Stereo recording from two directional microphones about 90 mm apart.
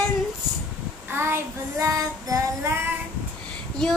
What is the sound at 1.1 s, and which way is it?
Child singing, 25° right (ahead or behind).